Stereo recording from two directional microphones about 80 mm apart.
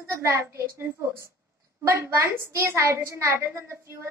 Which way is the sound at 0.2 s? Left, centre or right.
Right.